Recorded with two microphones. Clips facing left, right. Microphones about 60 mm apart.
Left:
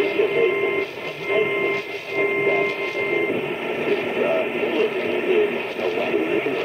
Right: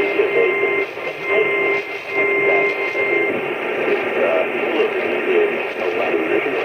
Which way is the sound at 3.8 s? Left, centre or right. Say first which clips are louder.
Right 3 dB; right.